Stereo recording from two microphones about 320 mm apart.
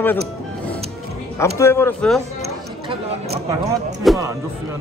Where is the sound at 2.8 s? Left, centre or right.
Centre.